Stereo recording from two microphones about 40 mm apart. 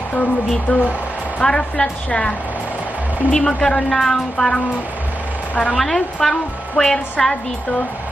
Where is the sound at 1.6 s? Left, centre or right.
Left.